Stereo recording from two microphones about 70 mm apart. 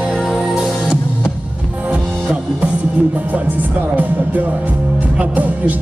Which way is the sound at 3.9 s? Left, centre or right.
Right.